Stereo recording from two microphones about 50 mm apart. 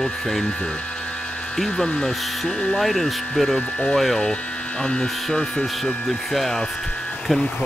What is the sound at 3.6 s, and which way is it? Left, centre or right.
Speech, left.